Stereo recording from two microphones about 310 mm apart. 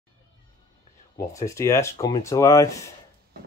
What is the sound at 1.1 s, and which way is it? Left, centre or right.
Speech, centre.